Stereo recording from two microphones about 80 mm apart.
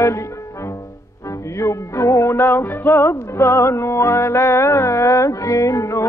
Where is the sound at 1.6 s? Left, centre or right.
Left.